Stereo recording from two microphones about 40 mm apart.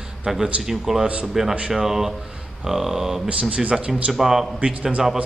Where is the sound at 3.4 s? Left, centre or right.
Right.